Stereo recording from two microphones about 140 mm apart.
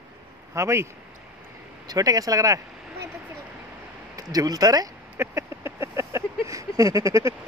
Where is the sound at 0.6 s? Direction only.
20° right (ahead or behind).